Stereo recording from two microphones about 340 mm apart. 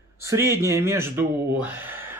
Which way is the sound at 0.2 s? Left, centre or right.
Centre.